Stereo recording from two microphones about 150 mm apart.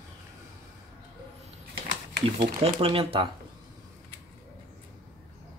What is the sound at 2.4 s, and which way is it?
Speech, 40° right (ahead or behind).